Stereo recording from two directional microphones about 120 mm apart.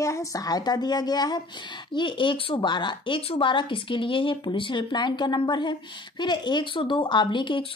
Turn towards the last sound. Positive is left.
turn(degrees=45)  # may be behind; listen again after turning